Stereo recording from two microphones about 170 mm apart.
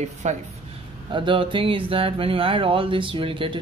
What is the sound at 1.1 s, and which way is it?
Speech, 30° right (ahead or behind).